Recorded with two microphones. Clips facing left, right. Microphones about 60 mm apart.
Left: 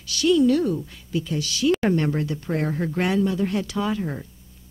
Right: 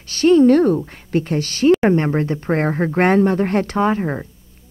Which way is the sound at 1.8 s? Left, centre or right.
Right.